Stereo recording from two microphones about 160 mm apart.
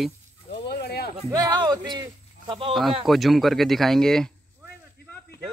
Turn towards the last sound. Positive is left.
turn(degrees=5)  # may be behind; listen again after turning